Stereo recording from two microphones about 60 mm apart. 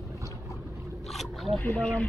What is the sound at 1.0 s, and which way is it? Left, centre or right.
Boat, centre.